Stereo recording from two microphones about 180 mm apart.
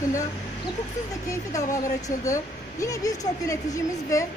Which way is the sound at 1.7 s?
20° left (ahead or behind).